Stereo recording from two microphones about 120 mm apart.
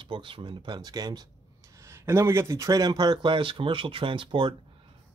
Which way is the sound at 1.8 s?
25° right (ahead or behind).